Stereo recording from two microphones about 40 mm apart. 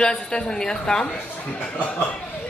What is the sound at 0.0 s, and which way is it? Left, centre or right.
A woman's voice, left.